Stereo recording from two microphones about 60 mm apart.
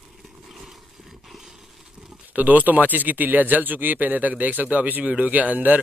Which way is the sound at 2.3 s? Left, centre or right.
Right.